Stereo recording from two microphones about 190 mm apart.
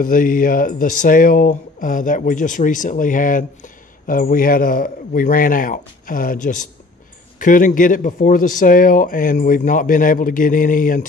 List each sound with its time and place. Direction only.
0.0 s speech: 45° left (ahead or behind)